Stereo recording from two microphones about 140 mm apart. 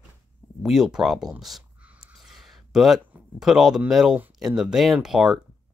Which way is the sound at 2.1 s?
Centre (ahead or behind).